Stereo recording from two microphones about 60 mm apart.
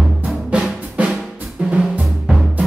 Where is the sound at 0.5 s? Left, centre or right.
Centre.